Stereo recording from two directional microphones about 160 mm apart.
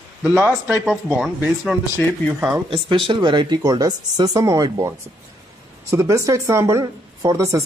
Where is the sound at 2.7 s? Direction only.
30° right (ahead or behind).